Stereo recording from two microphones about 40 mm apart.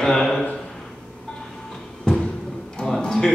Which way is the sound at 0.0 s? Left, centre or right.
Centre.